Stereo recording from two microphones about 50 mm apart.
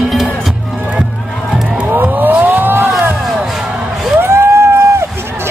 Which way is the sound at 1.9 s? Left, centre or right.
Right.